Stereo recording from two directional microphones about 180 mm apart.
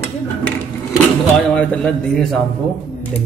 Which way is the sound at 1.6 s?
5° left (ahead or behind).